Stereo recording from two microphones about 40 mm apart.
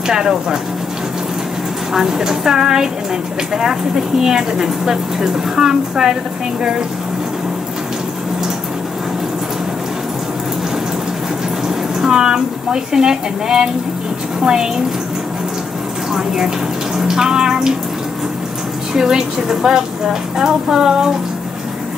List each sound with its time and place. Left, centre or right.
0.1 s speech: centre
2.0 s speech: centre
11.6 s speech: centre
16.1 s speech: centre
18.9 s speech: centre